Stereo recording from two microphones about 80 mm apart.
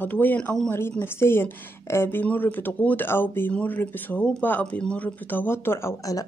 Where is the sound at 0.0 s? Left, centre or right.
Left.